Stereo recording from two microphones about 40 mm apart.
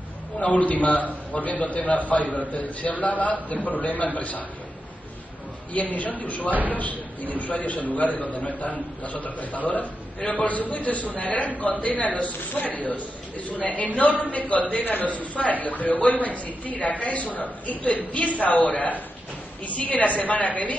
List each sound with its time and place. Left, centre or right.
0.4 s a man's voice: left
5.7 s a man's voice: left